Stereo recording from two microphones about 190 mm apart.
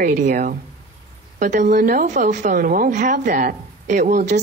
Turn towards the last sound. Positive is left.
turn(degrees=-40)  # may be behind; listen again after turning